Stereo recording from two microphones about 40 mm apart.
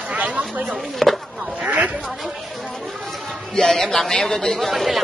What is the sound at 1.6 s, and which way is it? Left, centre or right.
Speech, right.